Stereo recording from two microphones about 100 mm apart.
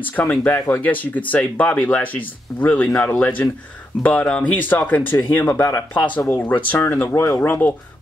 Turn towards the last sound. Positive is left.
turn(degrees=20)  # may be behind; listen again after turning